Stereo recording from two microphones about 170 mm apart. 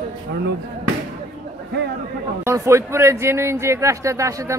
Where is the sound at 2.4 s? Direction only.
15° right (ahead or behind).